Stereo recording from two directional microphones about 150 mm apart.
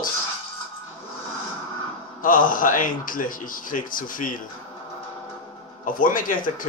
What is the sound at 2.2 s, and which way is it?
Speech, 65° left (ahead or behind).